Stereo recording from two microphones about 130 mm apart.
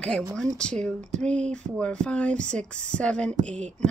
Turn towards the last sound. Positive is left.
turn(degrees=10)  # may be behind; listen again after turning